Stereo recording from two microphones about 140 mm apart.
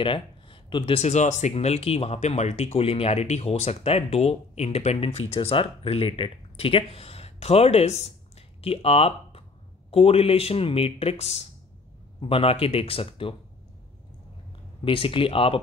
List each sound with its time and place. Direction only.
0.0 s speech: 35° left (ahead or behind)
14.9 s speech: 40° left (ahead or behind)